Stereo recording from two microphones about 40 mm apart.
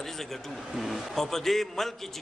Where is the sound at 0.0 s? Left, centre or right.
Centre.